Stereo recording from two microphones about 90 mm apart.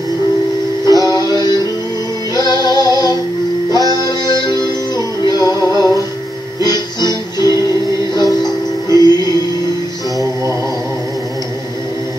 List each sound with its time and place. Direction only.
0.8 s music: 45° left (ahead or behind)
2.3 s female singing: 50° left (ahead or behind)
3.7 s music: 45° left (ahead or behind)